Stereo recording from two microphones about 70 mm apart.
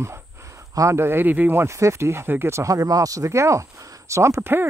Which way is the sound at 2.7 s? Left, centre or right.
Right.